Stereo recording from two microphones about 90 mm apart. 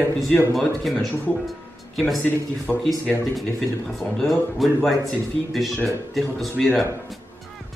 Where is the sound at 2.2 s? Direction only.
20° left (ahead or behind).